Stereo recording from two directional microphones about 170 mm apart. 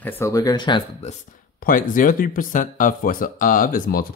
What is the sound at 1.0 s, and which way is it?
Speech, 40° left (ahead or behind).